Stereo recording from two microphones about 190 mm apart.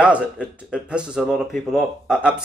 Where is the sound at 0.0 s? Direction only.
5° right (ahead or behind).